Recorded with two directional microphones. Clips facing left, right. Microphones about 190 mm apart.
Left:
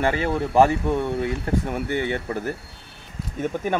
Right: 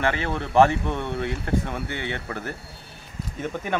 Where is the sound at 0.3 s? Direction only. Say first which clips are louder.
Even; 10° left (ahead or behind).